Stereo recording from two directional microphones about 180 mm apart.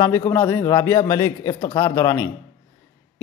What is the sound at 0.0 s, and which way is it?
A man's voice, 15° left (ahead or behind).